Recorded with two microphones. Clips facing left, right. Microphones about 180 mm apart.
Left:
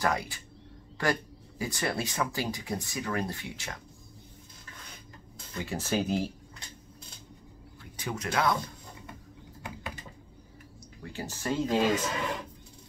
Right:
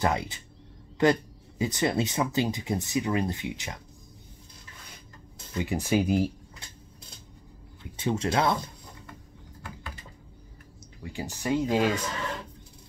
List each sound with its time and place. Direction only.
0.0 s speech: 20° right (ahead or behind)
5.6 s speech: 15° right (ahead or behind)
7.8 s speech: 25° right (ahead or behind)
11.0 s speech: 15° right (ahead or behind)